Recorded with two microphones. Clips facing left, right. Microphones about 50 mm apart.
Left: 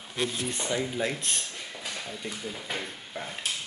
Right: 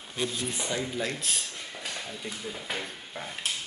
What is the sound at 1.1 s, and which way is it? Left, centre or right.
Speech, centre.